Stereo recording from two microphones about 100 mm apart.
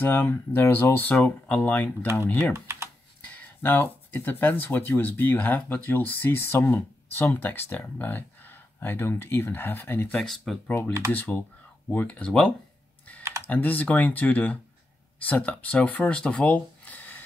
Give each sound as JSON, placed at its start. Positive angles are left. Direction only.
{"t": 0.0, "sound": "speech", "side_deg": 20}
{"t": 2.5, "sound": "typing", "side_deg": -25}
{"t": 3.2, "sound": "speech", "side_deg": 15}
{"t": 10.1, "sound": "speech", "side_deg": 0}
{"t": 11.1, "sound": "speech", "side_deg": 15}